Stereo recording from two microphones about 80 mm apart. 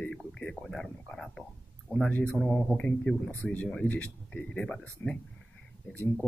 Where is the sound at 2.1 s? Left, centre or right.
Centre.